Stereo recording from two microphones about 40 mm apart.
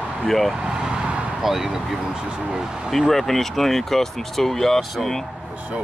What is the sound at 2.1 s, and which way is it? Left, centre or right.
Speech, right.